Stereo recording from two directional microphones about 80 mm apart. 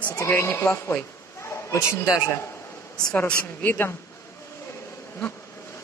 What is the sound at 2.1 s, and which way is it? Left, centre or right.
Speech, left.